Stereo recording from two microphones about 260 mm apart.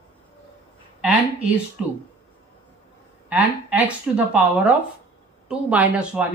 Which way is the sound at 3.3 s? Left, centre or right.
Centre.